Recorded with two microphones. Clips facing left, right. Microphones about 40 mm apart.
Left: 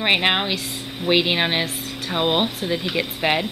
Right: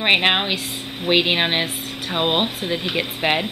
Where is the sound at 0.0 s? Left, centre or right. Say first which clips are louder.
Right 2 dB; centre.